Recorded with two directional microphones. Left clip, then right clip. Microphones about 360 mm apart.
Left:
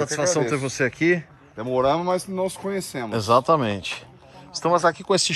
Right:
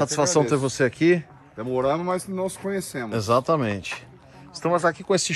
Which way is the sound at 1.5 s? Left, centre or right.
Left.